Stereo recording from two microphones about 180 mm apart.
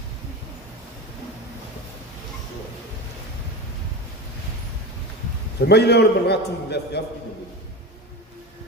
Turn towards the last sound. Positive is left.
turn(degrees=65)  # may be behind; listen again after turning